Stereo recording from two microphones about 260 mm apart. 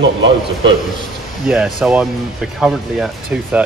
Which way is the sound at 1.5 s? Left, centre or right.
Centre.